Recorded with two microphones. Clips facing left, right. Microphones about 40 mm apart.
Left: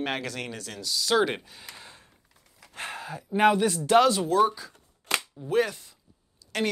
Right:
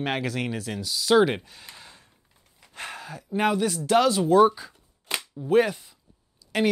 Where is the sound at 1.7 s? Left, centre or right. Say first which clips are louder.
Left 1 dB; left.